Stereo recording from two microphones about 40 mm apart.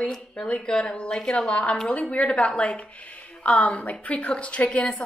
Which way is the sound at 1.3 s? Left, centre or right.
Left.